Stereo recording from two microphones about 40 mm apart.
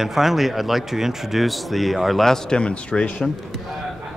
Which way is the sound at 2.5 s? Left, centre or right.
Left.